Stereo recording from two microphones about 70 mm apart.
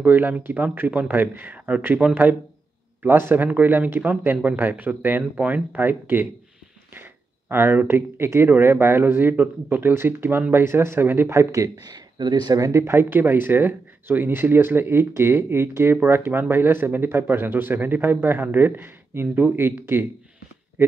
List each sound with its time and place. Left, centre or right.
0.0 s speech: right
11.3 s speech: right
11.7 s speech: right
12.5 s speech: right
12.8 s speech: right